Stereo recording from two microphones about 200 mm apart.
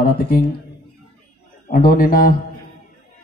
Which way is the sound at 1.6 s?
45° left (ahead or behind).